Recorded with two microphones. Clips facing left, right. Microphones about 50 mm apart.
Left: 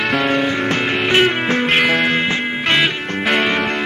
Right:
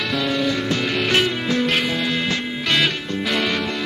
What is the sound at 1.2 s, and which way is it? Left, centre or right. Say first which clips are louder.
Music: left 5 dB; left.